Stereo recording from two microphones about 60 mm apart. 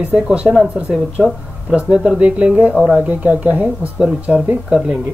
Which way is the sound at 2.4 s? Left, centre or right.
Right.